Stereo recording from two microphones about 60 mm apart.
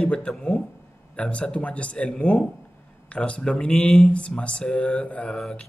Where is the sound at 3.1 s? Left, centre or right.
Centre.